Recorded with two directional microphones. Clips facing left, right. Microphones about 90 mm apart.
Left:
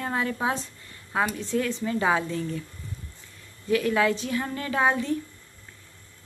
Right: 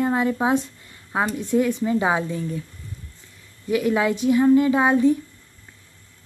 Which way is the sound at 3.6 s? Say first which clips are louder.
Right 2 dB; 20° right (ahead or behind).